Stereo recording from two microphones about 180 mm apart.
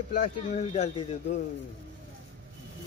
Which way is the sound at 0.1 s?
40° left (ahead or behind).